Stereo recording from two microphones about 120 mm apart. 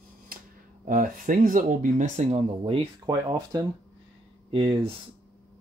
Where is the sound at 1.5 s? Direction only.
90° right; by 2.8 s 60° right (ahead or behind).